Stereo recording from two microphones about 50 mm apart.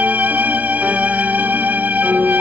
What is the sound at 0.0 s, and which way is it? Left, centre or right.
Music, right.